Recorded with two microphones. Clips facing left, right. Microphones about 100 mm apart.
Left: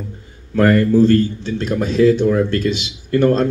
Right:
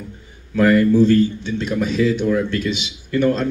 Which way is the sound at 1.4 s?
35° left (ahead or behind).